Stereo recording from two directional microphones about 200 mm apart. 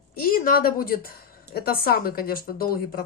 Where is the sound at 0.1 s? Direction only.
45° left (ahead or behind).